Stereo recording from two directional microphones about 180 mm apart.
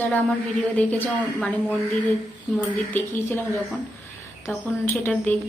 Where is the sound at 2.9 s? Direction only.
15° left (ahead or behind).